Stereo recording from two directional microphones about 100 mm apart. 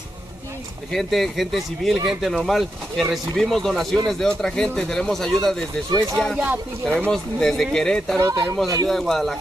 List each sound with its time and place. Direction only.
0.9 s speech: centre (ahead or behind)
6.4 s speech: 20° right (ahead or behind)
7.1 s speech: 5° left (ahead or behind)